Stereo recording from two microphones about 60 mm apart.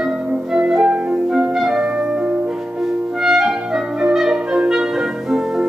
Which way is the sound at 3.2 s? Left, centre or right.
Centre.